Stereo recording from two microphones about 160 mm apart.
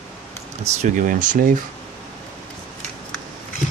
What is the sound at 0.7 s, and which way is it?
Speech, 50° right (ahead or behind).